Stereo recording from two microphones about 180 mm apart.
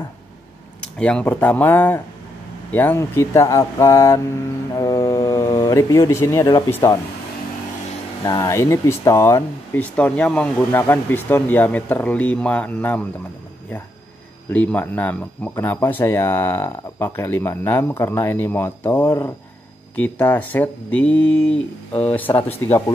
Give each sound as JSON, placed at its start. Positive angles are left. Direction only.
{"t": 0.9, "sound": "speech", "side_deg": 5}
{"t": 8.3, "sound": "speech", "side_deg": 20}
{"t": 14.5, "sound": "speech", "side_deg": 10}